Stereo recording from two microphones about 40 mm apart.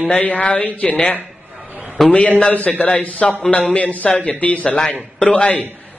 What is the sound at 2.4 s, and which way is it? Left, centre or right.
A man's voice, left.